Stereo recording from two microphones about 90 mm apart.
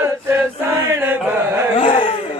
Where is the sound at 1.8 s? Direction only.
80° left.